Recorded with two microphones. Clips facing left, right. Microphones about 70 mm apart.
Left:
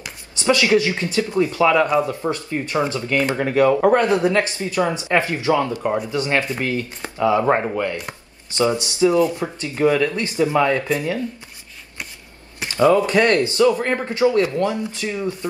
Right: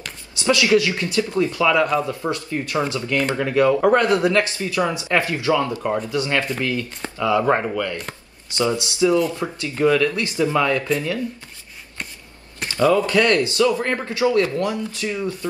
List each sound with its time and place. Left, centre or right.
0.4 s speech: left
3.8 s speech: left
5.8 s speech: centre
6.0 s speech: left
12.6 s speech: centre